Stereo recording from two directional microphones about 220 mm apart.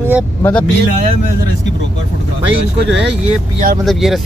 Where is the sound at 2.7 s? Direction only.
50° right (ahead or behind).